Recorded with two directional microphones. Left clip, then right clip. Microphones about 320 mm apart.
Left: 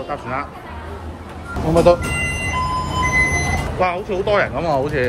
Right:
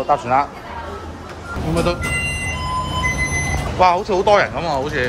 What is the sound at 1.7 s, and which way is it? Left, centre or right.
Speech, centre.